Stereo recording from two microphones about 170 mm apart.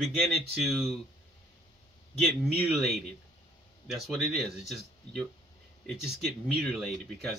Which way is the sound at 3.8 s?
Centre (ahead or behind).